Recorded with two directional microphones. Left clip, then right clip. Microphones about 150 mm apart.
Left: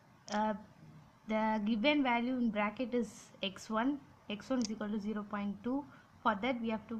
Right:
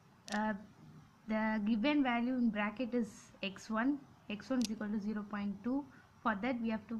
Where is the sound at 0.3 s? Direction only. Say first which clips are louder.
Left 3 dB; 15° left (ahead or behind).